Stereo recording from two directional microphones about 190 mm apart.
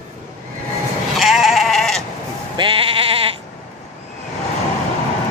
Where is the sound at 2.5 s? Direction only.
25° right (ahead or behind).